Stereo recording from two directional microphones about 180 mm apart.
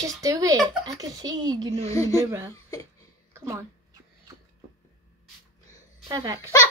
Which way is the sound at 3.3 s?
15° right (ahead or behind).